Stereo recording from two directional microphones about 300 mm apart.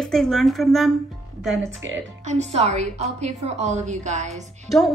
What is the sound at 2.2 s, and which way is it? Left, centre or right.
A woman's voice, right.